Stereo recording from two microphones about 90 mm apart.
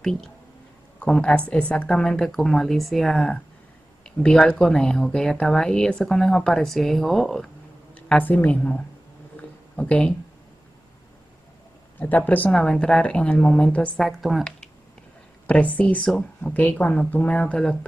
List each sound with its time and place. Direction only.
0.0 s speech: 5° left (ahead or behind)
7.9 s a woman's voice: 20° left (ahead or behind)
9.4 s a sound: 15° left (ahead or behind)
12.0 s speech: 20° left (ahead or behind)
13.9 s speech: centre (ahead or behind)
15.4 s speech: 15° left (ahead or behind)